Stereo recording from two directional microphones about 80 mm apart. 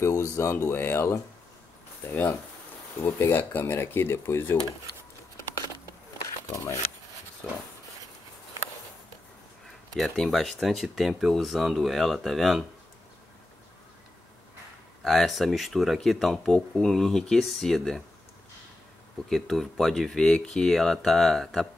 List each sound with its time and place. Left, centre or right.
0.0 s speech: left
5.9 s a sound: left
9.9 s speech: centre
15.0 s speech: centre
19.2 s speech: centre